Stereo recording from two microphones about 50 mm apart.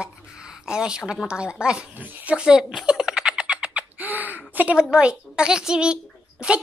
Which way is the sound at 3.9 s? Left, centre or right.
Right.